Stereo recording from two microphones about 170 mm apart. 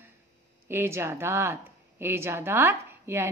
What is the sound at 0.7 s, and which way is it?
A woman's voice, 15° right (ahead or behind).